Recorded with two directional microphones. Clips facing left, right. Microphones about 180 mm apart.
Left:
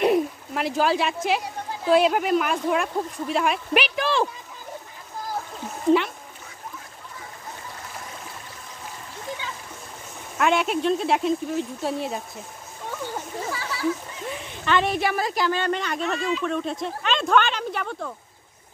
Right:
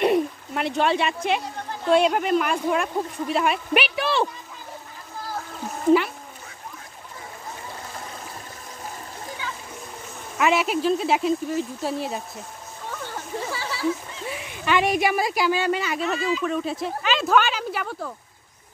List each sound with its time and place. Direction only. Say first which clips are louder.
0.0 s splash: even; centre (ahead or behind)
1.9 s a woman's voice: even; centre (ahead or behind)
5.9 s speech: right 2 dB; centre (ahead or behind)
10.3 s a woman's voice: even; 5° right (ahead or behind)
13.5 s a sound: even; 30° right (ahead or behind)
14.2 s a woman's voice: right 1 dB; 10° right (ahead or behind)